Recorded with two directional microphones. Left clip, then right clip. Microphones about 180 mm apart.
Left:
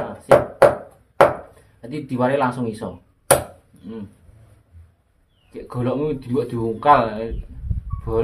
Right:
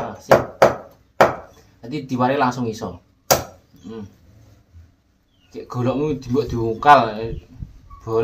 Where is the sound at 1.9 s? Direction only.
25° right (ahead or behind).